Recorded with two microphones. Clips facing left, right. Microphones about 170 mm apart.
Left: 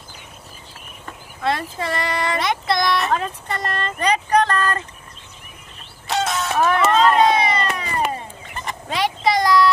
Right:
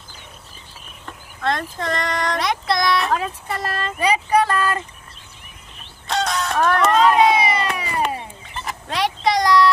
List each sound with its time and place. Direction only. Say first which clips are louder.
1.0 s speech: left 1 dB; 5° left (ahead or behind)
6.0 s music: even; 5° left (ahead or behind)
8.1 s a sound: even; 5° right (ahead or behind)